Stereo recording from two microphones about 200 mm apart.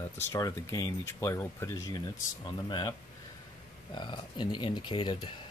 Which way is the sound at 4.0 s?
20° left (ahead or behind).